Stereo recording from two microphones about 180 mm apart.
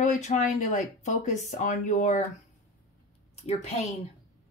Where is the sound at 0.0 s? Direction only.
45° left (ahead or behind).